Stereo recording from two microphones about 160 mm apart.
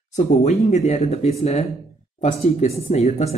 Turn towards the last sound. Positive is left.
turn(degrees=45)  # may be behind; listen again after turning